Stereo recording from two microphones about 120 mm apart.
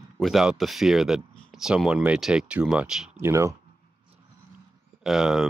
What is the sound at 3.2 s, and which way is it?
Speech, 25° right (ahead or behind).